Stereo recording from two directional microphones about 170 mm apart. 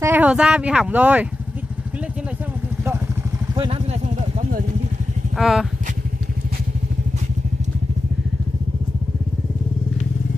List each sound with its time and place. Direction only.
0.0 s speech: 10° right (ahead or behind)
3.5 s vehicle: 30° right (ahead or behind)
5.4 s speech: centre (ahead or behind)